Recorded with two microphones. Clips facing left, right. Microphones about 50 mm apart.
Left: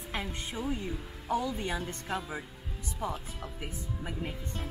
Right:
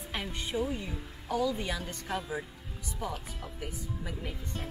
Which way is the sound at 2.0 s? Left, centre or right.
Centre.